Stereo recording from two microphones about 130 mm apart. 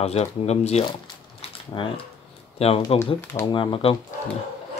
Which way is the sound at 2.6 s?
50° left (ahead or behind).